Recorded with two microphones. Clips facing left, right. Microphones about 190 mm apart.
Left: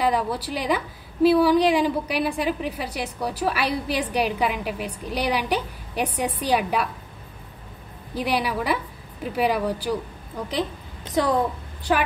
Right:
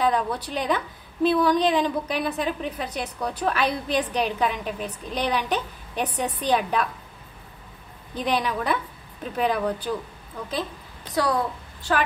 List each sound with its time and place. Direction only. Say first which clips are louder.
0.0 s a woman's voice: even; 10° left (ahead or behind)
8.1 s a woman's voice: left 1 dB; 10° left (ahead or behind)
11.1 s a woman's voice: left 2 dB; 20° left (ahead or behind)
11.9 s a woman's voice: left 1 dB; 10° left (ahead or behind)